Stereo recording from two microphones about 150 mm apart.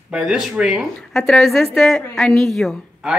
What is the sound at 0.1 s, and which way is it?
A woman's voice, 5° right (ahead or behind).